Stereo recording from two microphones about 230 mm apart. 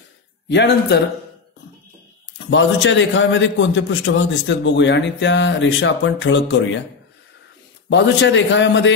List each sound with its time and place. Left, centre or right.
0.5 s a man's voice: left
2.3 s a man's voice: left
7.9 s a man's voice: left